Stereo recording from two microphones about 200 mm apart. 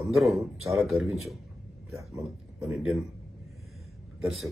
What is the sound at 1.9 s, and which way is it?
Speech, 15° right (ahead or behind).